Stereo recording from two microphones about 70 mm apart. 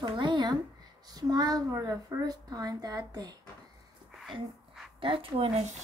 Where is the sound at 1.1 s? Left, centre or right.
Right.